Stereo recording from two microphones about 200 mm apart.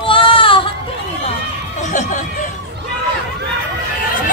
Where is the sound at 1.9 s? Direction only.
40° left (ahead or behind).